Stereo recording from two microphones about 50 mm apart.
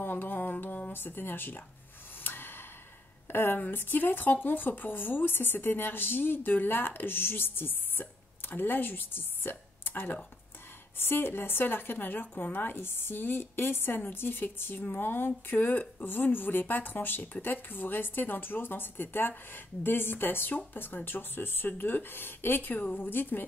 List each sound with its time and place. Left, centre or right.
0.0 s music: left
0.9 s speech: left
2.2 s sigh: left
3.3 s speech: left